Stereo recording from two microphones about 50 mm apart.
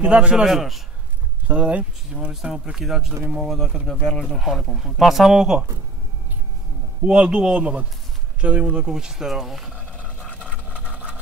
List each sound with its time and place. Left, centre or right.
0.0 s a man's voice: right
0.5 s speech: centre
1.5 s a man's voice: right
2.1 s speech: centre
3.3 s speech: centre
4.2 s speech: centre
7.0 s a man's voice: right
8.8 s speech: centre
10.4 s a sound: right